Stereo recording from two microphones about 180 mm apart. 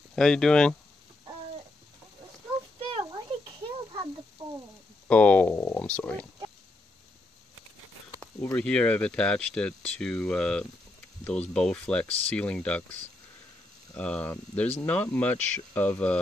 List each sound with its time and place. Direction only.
0.1 s speech: 5° left (ahead or behind)
2.8 s a sound: 25° right (ahead or behind)
5.0 s speech: 10° left (ahead or behind)
8.2 s speech: 10° left (ahead or behind)
13.9 s speech: 5° left (ahead or behind)